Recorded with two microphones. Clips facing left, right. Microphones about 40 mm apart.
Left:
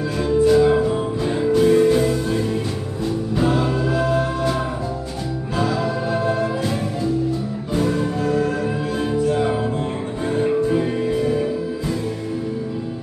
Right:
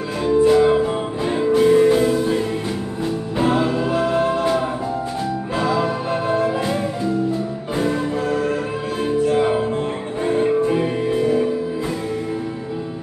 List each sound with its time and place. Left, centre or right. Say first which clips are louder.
0.2 s music: right 1 dB; right
3.3 s music: right 2 dB; right
5.6 s music: right 1 dB; right
7.7 s music: even; centre
9.3 s music: right 2 dB; right